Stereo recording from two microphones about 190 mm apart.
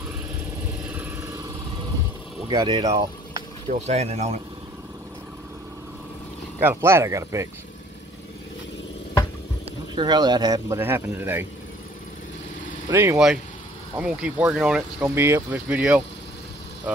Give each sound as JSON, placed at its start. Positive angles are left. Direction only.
{"t": 0.9, "sound": "a sound", "side_deg": -10}
{"t": 2.4, "sound": "speech", "side_deg": -25}
{"t": 3.8, "sound": "speech", "side_deg": -35}
{"t": 6.6, "sound": "speech", "side_deg": -10}
{"t": 9.9, "sound": "speech", "side_deg": -20}
{"t": 12.9, "sound": "speech", "side_deg": -10}